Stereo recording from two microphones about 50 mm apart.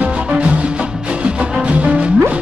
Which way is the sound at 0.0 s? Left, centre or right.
Right.